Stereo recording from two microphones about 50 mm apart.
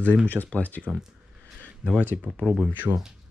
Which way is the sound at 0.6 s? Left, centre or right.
Left.